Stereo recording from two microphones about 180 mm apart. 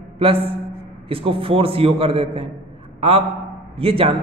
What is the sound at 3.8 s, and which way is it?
Speech, 30° right (ahead or behind).